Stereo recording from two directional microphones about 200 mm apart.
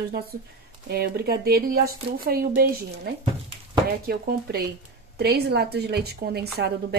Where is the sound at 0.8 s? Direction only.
55° right (ahead or behind).